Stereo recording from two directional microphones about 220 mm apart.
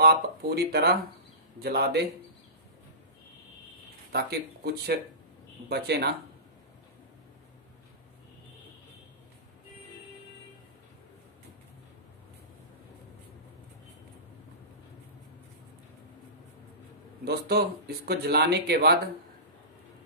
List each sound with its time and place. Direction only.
0.0 s speech: 45° right (ahead or behind)
4.1 s speech: 45° right (ahead or behind)
17.2 s speech: 45° right (ahead or behind)